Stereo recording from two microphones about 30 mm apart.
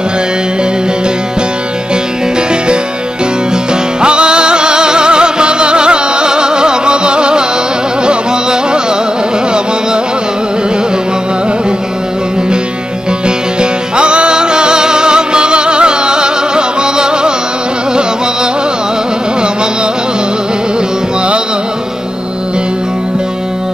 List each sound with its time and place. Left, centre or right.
4.0 s music: right
13.6 s music: right